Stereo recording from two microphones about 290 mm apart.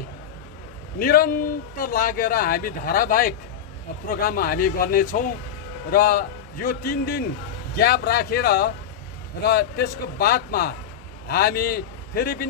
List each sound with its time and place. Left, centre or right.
0.9 s a man's voice: left